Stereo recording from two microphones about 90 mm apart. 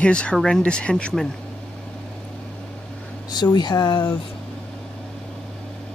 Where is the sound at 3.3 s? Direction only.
50° left (ahead or behind).